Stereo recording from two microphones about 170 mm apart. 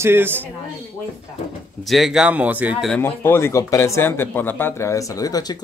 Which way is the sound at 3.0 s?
15° left (ahead or behind).